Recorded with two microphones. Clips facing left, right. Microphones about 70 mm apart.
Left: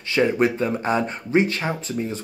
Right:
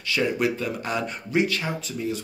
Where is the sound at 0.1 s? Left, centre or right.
Left.